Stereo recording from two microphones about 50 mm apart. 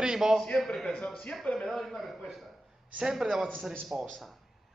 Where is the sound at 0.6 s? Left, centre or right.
Centre.